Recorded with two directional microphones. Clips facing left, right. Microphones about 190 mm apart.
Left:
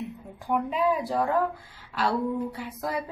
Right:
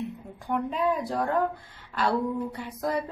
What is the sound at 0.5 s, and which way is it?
A woman's voice, 5° left (ahead or behind).